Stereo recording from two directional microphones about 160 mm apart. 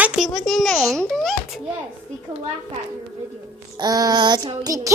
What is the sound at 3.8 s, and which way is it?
Child singing, 25° right (ahead or behind).